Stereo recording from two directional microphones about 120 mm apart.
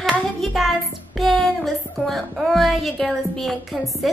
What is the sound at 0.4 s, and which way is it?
Music, centre (ahead or behind).